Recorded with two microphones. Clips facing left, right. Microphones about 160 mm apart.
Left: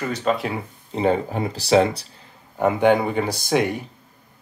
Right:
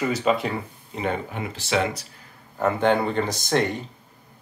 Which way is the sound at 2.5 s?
15° left (ahead or behind).